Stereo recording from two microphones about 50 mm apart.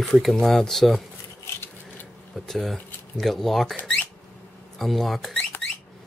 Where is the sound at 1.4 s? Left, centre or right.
Left.